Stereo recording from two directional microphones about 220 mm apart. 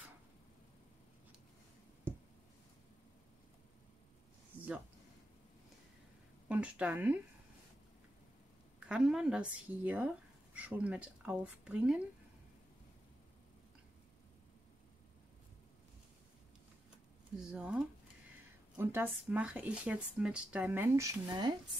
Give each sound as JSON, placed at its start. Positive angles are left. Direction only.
{"t": 6.5, "sound": "speech", "side_deg": -5}
{"t": 8.7, "sound": "speech", "side_deg": -5}
{"t": 17.4, "sound": "speech", "side_deg": -5}